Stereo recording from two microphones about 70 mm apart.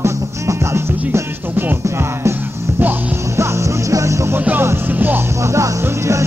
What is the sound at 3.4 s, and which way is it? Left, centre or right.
Music, right.